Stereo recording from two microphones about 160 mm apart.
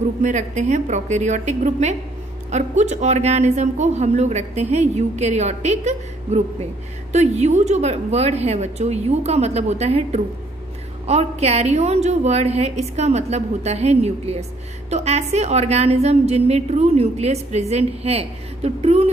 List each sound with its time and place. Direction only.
0.2 s a woman's voice: 50° right (ahead or behind)